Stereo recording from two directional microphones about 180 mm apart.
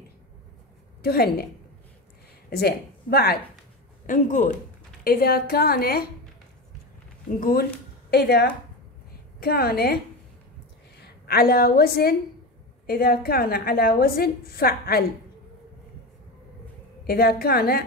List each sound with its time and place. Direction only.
1.0 s a woman's voice: 60° left (ahead or behind)
2.5 s a woman's voice: 60° left (ahead or behind)
4.0 s a man's voice: 45° left (ahead or behind)
5.0 s a woman's voice: 55° left (ahead or behind)
7.3 s a man's voice: 50° left (ahead or behind)
8.1 s a woman's voice: 65° left (ahead or behind)
11.0 s a woman's voice: 60° left (ahead or behind)
17.0 s a woman's voice: 60° left (ahead or behind)